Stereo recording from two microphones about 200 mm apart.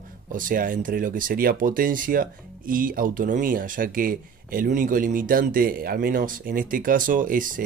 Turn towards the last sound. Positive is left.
turn(degrees=-40)  # may be behind; listen again after turning